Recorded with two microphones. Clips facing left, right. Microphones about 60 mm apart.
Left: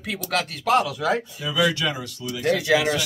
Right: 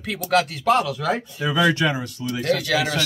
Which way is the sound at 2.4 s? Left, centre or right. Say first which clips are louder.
Left 2 dB; left.